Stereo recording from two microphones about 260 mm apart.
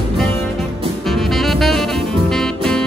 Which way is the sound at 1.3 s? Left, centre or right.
Centre.